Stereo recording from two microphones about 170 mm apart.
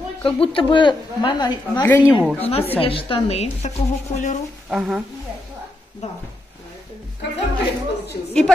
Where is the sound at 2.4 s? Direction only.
35° left (ahead or behind).